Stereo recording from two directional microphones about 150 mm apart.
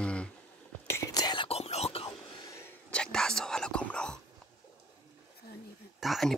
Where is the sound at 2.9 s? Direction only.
5° left (ahead or behind).